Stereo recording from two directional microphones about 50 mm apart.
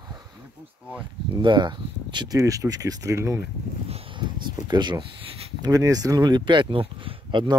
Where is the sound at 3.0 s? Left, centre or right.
Right.